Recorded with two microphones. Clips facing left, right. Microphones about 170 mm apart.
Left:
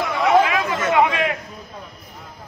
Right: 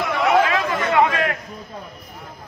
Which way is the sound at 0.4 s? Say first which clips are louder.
Even; 15° left (ahead or behind).